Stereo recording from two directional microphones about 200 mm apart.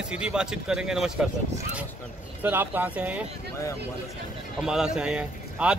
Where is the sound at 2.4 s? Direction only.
10° right (ahead or behind).